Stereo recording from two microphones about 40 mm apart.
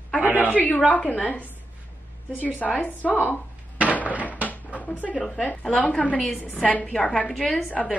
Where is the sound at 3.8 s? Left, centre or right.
Left.